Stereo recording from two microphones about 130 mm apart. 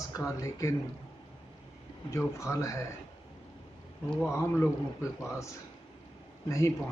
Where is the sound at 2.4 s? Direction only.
25° left (ahead or behind).